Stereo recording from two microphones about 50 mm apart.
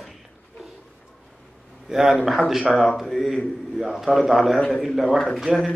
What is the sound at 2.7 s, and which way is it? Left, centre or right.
A man's voice, centre.